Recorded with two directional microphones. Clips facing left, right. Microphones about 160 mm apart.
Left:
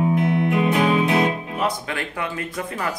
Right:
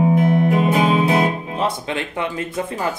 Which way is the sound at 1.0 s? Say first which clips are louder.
Right 2 dB; 30° right (ahead or behind).